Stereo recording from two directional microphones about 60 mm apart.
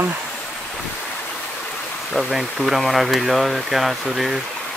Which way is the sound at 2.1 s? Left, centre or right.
Centre.